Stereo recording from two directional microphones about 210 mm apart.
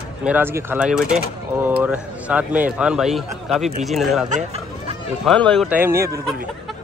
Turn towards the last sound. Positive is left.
turn(degrees=-15)  # may be behind; listen again after turning